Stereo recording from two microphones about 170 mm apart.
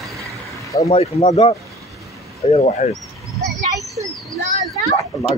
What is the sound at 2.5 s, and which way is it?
Speech, 45° left (ahead or behind).